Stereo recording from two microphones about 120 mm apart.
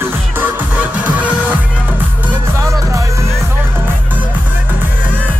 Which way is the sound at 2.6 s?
25° right (ahead or behind).